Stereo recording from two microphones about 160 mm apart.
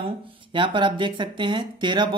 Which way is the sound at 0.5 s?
30° right (ahead or behind).